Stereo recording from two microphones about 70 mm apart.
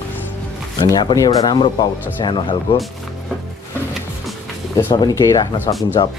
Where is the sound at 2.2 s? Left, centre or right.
Left.